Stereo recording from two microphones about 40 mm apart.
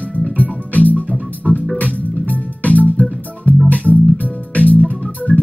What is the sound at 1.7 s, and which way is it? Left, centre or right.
Music, left.